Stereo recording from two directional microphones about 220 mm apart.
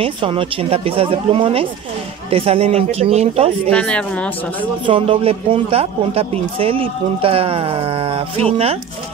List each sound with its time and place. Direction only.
0.0 s speech: 25° right (ahead or behind)
3.7 s speech: 5° left (ahead or behind)
4.8 s speech: 25° right (ahead or behind)